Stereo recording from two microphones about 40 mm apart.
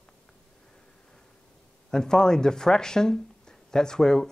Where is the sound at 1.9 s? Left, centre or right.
Centre.